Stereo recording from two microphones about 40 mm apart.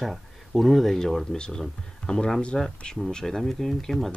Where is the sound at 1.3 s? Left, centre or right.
Left.